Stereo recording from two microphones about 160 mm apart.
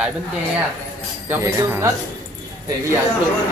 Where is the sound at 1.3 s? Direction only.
20° right (ahead or behind).